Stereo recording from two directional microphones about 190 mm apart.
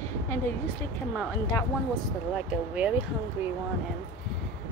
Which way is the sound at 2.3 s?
5° right (ahead or behind).